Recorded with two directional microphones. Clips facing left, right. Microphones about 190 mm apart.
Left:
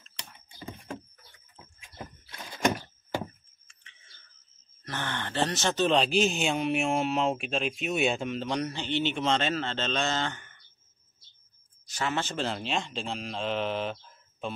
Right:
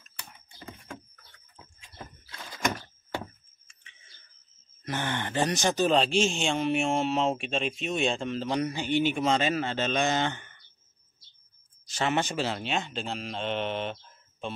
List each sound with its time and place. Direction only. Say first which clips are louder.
1.8 s vehicle: left 3 dB; 20° left (ahead or behind)
3.8 s a sound: right 1 dB; 15° right (ahead or behind)
4.8 s speech: right 3 dB; 15° right (ahead or behind)
11.9 s speech: right 3 dB; 20° right (ahead or behind)
12.4 s speech: right 1 dB; 5° right (ahead or behind)